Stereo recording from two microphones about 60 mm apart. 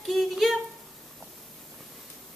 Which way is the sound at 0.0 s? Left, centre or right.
Centre.